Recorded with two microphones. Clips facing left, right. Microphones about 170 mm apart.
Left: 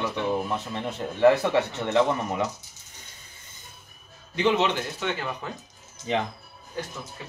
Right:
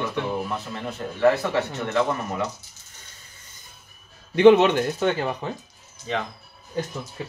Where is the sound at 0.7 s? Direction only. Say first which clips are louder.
Left 1 dB; 20° left (ahead or behind).